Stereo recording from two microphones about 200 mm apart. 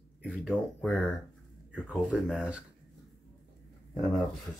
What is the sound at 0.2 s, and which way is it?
A man's voice, centre (ahead or behind).